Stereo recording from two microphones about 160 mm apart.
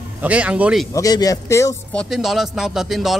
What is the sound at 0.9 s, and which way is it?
Speech, 20° left (ahead or behind).